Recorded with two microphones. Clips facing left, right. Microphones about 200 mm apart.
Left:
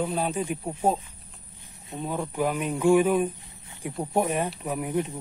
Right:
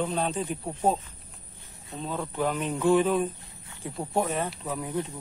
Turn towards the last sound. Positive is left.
turn(degrees=15)  # may be behind; listen again after turning